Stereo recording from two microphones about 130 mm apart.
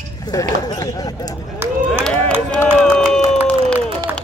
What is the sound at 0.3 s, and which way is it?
Speech, 30° left (ahead or behind).